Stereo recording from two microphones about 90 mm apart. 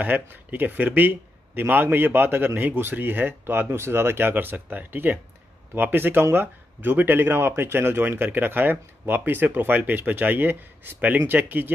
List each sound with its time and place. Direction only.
0.0 s speech: 20° right (ahead or behind)